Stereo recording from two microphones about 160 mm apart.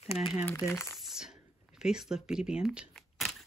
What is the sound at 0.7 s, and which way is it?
Speech, 15° left (ahead or behind).